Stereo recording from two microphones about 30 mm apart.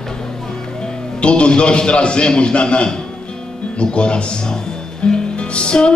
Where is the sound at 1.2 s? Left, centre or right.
Left.